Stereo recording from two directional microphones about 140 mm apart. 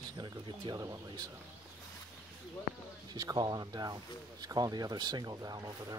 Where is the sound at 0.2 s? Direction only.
30° right (ahead or behind).